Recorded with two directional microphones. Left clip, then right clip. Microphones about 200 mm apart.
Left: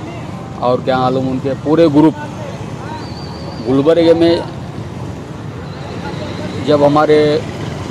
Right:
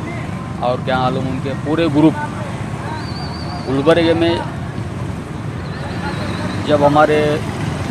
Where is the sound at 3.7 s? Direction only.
65° left (ahead or behind).